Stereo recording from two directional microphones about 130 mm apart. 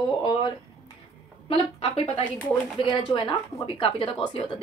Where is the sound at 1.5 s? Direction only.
45° left (ahead or behind).